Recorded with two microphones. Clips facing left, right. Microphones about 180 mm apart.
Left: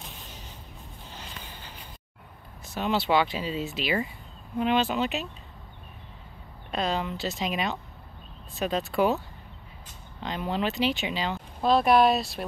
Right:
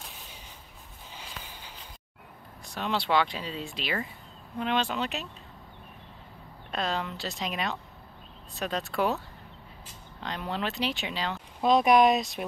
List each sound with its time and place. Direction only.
1.1 s a sound: 5° right (ahead or behind)
2.6 s speech: 5° left (ahead or behind)
6.7 s speech: centre (ahead or behind)
10.2 s speech: centre (ahead or behind)
11.6 s speech: 15° right (ahead or behind)